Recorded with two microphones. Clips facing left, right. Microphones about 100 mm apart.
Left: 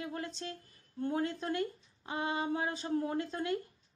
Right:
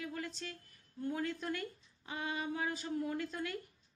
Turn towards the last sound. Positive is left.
turn(degrees=25)  # may be behind; listen again after turning